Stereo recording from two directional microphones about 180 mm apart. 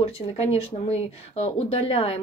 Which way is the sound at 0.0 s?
35° left (ahead or behind).